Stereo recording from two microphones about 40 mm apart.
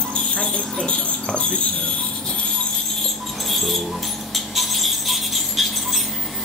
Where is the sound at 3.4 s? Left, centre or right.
Centre.